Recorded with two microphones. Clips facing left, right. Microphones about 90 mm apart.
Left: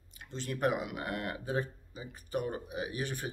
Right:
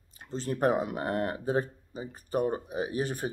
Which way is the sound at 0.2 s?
35° right (ahead or behind).